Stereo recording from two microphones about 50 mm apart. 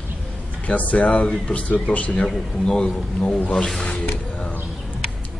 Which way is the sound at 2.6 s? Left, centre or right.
Centre.